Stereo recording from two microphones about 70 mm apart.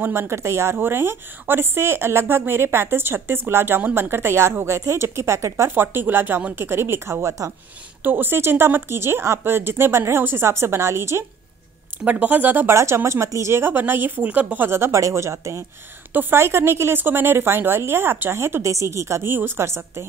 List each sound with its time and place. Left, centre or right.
0.0 s a woman's voice: right
5.8 s a woman's voice: right
8.0 s a woman's voice: right
12.0 s speech: right
12.7 s a woman's voice: right
15.0 s a woman's voice: right
16.1 s a woman's voice: right
18.4 s a woman's voice: right